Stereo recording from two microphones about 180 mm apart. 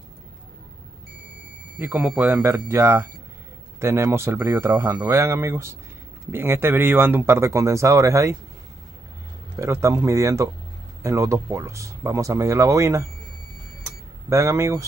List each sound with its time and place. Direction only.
1.8 s speech: 10° right (ahead or behind)
9.6 s speech: 15° right (ahead or behind)
14.3 s speech: 15° right (ahead or behind)